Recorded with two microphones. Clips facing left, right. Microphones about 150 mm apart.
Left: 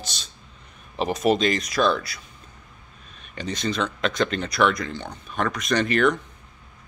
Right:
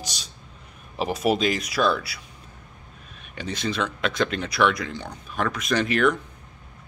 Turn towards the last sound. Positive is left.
turn(degrees=-5)  # may be behind; listen again after turning